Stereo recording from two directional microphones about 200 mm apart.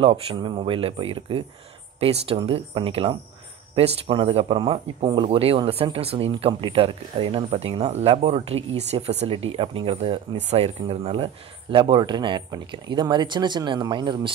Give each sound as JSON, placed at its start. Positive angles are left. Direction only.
{"t": 0.0, "sound": "speech", "side_deg": -25}